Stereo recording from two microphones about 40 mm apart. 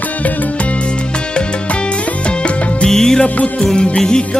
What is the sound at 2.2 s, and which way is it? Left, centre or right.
Music, left.